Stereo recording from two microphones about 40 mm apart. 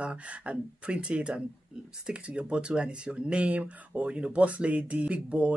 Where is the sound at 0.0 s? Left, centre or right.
Right.